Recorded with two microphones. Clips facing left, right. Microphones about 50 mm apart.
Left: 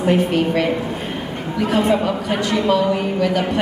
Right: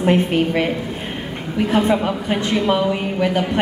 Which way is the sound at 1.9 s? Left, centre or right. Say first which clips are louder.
Left 1 dB; right.